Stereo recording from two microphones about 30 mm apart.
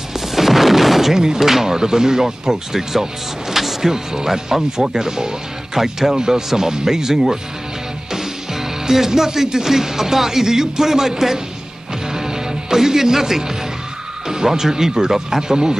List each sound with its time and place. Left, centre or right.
0.3 s a sound: centre
1.1 s speech: centre
12.1 s music: centre
14.2 s speech: centre